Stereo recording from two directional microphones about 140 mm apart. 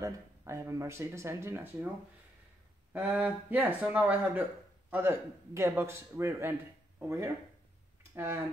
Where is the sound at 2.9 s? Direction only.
10° right (ahead or behind).